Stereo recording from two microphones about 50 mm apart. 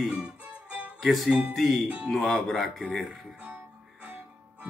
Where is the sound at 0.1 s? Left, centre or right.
Right.